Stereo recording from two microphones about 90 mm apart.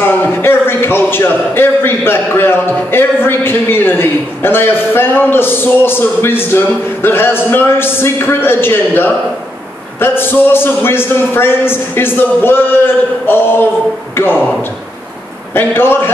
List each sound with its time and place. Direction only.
0.0 s a man's voice: 25° left (ahead or behind)
15.5 s a man's voice: 25° left (ahead or behind)